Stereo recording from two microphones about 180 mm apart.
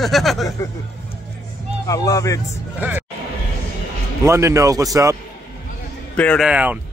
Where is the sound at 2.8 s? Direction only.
10° right (ahead or behind).